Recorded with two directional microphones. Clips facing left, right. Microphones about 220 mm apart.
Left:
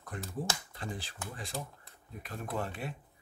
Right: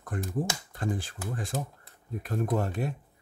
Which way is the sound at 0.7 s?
50° right (ahead or behind).